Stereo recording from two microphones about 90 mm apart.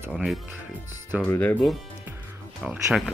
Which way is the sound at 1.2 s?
20° left (ahead or behind).